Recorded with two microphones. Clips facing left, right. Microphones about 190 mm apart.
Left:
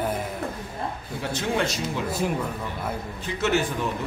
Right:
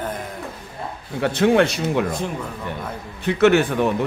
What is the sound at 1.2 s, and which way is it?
Speech, 65° right (ahead or behind).